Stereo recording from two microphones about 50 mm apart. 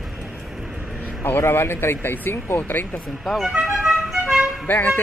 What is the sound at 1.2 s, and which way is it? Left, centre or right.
Speech, left.